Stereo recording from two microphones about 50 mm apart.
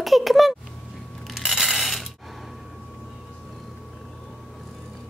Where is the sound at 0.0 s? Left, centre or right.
Centre.